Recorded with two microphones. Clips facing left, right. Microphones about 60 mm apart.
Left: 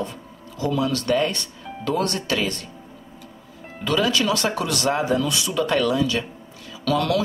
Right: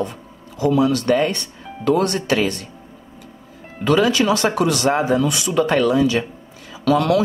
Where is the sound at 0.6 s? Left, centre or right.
Right.